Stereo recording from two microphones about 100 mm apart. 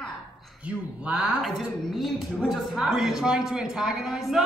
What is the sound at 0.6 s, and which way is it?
Speech, 10° right (ahead or behind).